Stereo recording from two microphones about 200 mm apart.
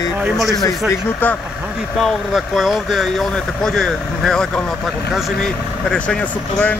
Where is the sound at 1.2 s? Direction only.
10° left (ahead or behind).